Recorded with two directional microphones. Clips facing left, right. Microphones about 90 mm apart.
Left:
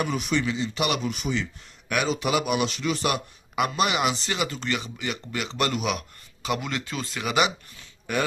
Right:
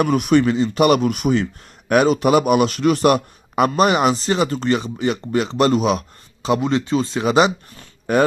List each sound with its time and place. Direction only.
0.0 s a man's voice: 55° right (ahead or behind); by 8.2 s 40° right (ahead or behind)